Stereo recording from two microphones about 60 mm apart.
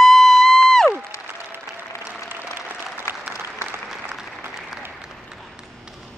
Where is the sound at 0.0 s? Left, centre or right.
Centre.